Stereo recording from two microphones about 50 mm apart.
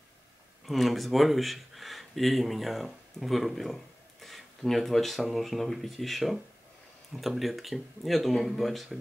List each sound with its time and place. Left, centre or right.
0.7 s speech: centre